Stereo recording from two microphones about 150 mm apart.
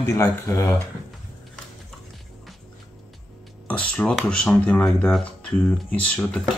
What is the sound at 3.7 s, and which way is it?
Speech, 10° left (ahead or behind).